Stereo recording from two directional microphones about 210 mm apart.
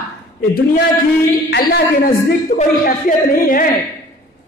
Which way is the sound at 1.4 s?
50° left (ahead or behind).